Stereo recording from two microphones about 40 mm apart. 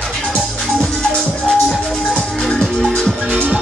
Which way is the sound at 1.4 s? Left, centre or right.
Centre.